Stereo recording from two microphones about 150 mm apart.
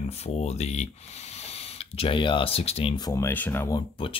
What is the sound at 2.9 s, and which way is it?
Speech, 25° left (ahead or behind).